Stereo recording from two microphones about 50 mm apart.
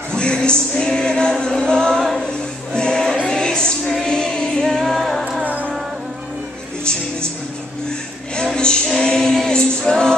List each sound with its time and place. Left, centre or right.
0.1 s music: centre
3.8 s music: centre
4.1 s music: centre
4.8 s music: centre
5.4 s music: right
6.8 s music: centre
8.8 s music: centre